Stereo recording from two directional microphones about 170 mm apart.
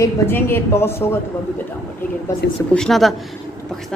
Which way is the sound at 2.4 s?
75° left (ahead or behind).